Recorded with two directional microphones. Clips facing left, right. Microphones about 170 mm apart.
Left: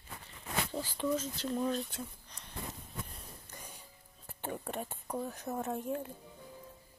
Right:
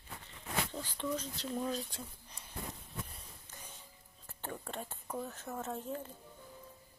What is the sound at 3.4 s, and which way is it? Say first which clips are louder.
Music: left 3 dB; 10° left (ahead or behind).